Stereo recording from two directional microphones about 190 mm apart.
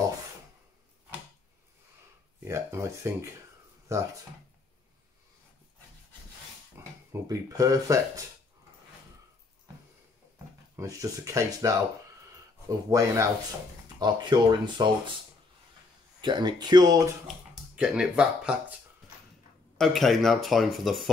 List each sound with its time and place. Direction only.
2.4 s speech: 15° right (ahead or behind)
7.1 s speech: 15° right (ahead or behind)
10.8 s speech: 15° right (ahead or behind)
16.2 s speech: 25° right (ahead or behind)
17.7 s speech: 5° right (ahead or behind)
19.8 s speech: centre (ahead or behind)